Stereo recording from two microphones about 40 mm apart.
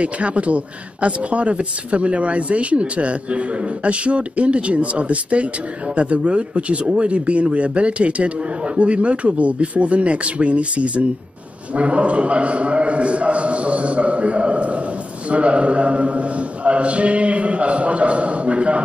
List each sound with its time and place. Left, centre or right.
0.0 s a man's voice: right